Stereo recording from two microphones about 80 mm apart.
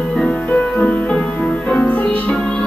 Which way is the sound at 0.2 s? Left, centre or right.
Centre.